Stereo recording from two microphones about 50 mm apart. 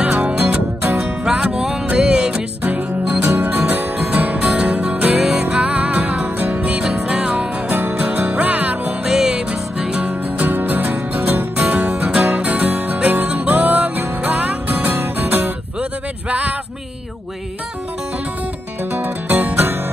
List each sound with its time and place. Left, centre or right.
0.5 s music: right
1.2 s music: centre
2.6 s music: right
5.2 s music: centre
7.7 s music: right
9.0 s music: centre
10.4 s music: right
11.5 s music: right
15.8 s a sound: right
18.9 s music: right